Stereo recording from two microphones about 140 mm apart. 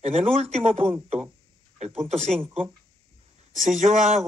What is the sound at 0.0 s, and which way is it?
Speech, 50° right (ahead or behind).